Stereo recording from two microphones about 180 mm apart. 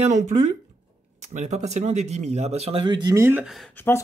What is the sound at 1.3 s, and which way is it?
Speech, 40° right (ahead or behind).